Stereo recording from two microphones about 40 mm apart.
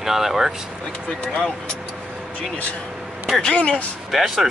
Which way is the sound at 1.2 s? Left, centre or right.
Centre.